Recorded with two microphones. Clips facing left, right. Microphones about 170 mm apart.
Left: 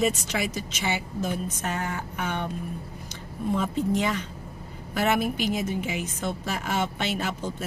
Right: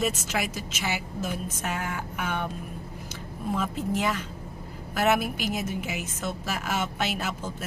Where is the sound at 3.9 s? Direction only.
5° right (ahead or behind).